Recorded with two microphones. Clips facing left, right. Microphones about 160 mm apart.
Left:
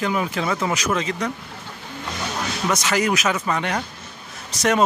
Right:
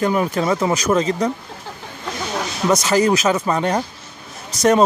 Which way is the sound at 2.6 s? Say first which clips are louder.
Right 6 dB; 35° right (ahead or behind).